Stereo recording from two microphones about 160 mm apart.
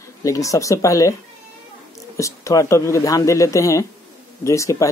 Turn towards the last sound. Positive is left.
turn(degrees=20)  # may be behind; listen again after turning